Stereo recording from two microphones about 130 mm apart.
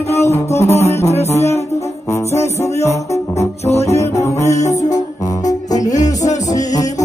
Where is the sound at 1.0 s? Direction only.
55° left (ahead or behind).